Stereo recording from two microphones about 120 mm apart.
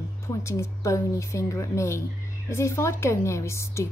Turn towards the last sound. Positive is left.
turn(degrees=25)  # may be behind; listen again after turning